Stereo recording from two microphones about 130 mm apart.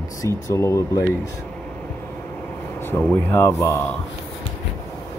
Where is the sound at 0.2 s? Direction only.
20° left (ahead or behind).